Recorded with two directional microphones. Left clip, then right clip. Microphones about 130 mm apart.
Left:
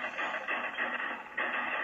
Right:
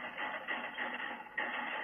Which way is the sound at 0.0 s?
30° right (ahead or behind).